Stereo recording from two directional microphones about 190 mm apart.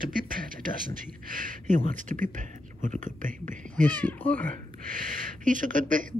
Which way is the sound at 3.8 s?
10° left (ahead or behind).